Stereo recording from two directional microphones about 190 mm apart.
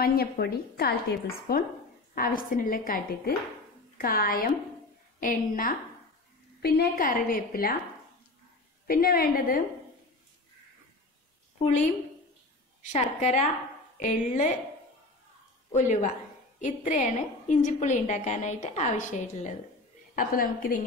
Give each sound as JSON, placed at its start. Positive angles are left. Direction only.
{"t": 0.0, "sound": "a woman's voice", "side_deg": 55}
{"t": 8.8, "sound": "a woman's voice", "side_deg": 50}
{"t": 12.8, "sound": "a woman's voice", "side_deg": 40}
{"t": 15.7, "sound": "a woman's voice", "side_deg": 40}